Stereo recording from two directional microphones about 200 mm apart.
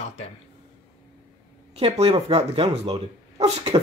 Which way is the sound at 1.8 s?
30° right (ahead or behind).